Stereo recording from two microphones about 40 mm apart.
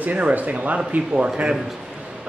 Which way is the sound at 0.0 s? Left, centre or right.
Right.